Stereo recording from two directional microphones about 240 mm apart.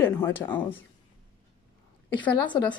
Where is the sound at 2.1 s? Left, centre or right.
Centre.